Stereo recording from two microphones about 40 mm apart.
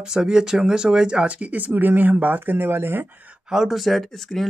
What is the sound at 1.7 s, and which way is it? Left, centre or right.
Speech, right.